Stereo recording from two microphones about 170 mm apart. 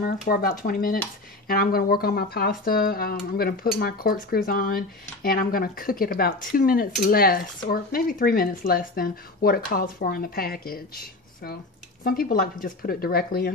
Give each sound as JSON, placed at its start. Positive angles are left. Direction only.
{"t": 0.0, "sound": "speech", "side_deg": 55}